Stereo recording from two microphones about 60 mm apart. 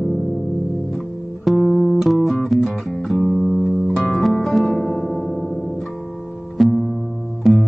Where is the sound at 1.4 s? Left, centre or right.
Centre.